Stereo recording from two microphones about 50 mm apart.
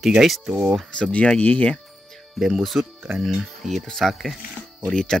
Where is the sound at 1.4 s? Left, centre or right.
Left.